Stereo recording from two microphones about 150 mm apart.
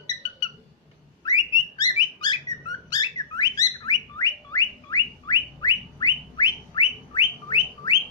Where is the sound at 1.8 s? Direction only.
30° left (ahead or behind).